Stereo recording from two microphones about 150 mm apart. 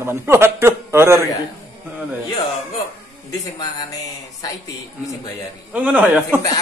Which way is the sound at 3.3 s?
25° left (ahead or behind).